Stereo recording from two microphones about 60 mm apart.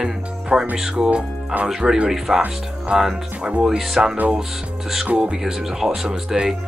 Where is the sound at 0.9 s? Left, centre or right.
Centre.